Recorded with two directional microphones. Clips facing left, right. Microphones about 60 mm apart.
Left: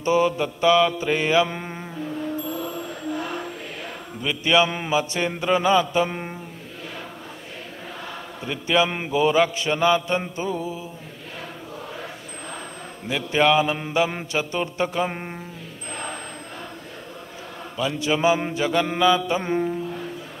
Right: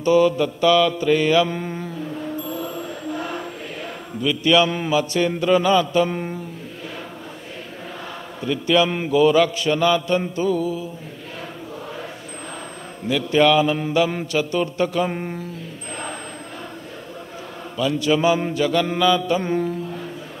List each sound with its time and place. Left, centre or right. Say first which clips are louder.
0.0 s a man's voice: right 4 dB; left
4.2 s a man's voice: right 3 dB; left
8.5 s a man's voice: right 3 dB; centre
13.1 s a man's voice: right 3 dB; left
17.7 s a man's voice: right 4 dB; left